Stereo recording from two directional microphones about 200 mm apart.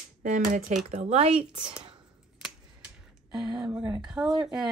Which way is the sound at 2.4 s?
5° right (ahead or behind).